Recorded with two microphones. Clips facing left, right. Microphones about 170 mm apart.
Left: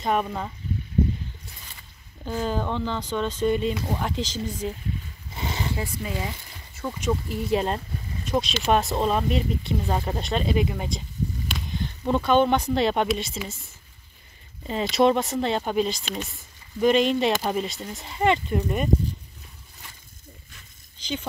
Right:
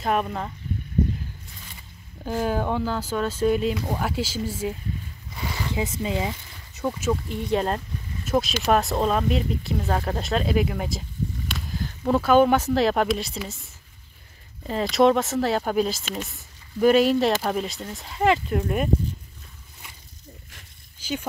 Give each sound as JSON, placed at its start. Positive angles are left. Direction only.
{"t": 0.0, "sound": "speech", "side_deg": 0}
{"t": 2.2, "sound": "speech", "side_deg": -10}
{"t": 5.3, "sound": "a sound", "side_deg": 25}
{"t": 5.8, "sound": "speech", "side_deg": -20}
{"t": 7.0, "sound": "speech", "side_deg": 0}
{"t": 14.7, "sound": "speech", "side_deg": 0}
{"t": 21.0, "sound": "a sound", "side_deg": -10}